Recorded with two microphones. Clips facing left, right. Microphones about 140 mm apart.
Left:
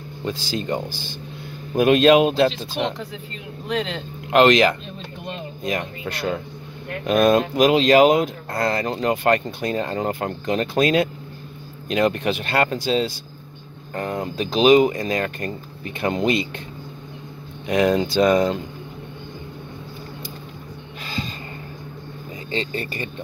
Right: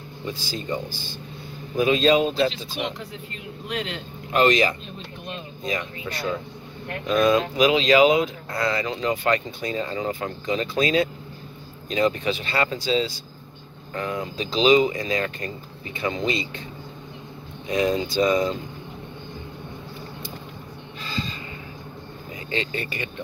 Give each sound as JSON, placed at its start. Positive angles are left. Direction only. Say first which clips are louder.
{"t": 0.2, "sound": "speech", "louder": "left 5 dB", "side_deg": 85}
{"t": 4.3, "sound": "speech", "louder": "left 5 dB", "side_deg": 90}
{"t": 5.6, "sound": "speech", "louder": "left 3 dB", "side_deg": 60}
{"t": 17.6, "sound": "speech", "louder": "left 4 dB", "side_deg": 70}
{"t": 21.0, "sound": "a sound", "louder": "left 1 dB", "side_deg": 55}
{"t": 22.5, "sound": "speech", "louder": "left 2 dB", "side_deg": 35}